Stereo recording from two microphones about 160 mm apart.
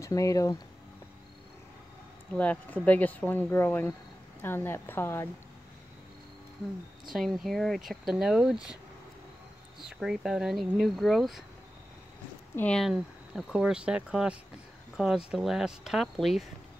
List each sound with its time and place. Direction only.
0.0 s speech: 20° left (ahead or behind)
2.3 s speech: 10° left (ahead or behind)
7.1 s speech: centre (ahead or behind)
9.8 s speech: centre (ahead or behind)
12.5 s speech: 5° left (ahead or behind)